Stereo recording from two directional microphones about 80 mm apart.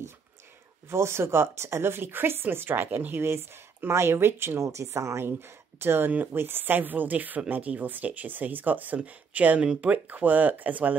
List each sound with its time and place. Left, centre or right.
0.8 s speech: right